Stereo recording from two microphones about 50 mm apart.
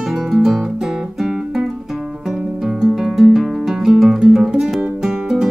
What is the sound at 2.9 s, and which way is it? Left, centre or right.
Music, centre.